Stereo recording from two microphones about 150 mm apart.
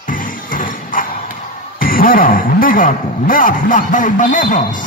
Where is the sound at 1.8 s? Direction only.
70° left (ahead or behind).